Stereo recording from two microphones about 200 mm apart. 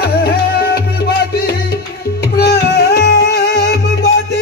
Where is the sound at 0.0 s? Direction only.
50° left (ahead or behind).